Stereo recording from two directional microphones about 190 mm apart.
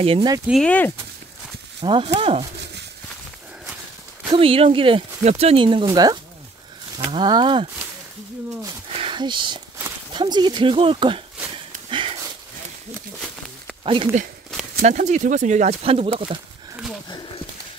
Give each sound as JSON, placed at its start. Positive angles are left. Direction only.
{"t": 0.0, "sound": "speech", "side_deg": -25}
{"t": 0.5, "sound": "speech", "side_deg": 5}
{"t": 1.8, "sound": "speech", "side_deg": -25}
{"t": 4.3, "sound": "speech", "side_deg": -30}
{"t": 8.9, "sound": "a sound", "side_deg": -25}
{"t": 10.1, "sound": "speech", "side_deg": -25}
{"t": 11.9, "sound": "a sound", "side_deg": -25}
{"t": 14.1, "sound": "speech", "side_deg": -40}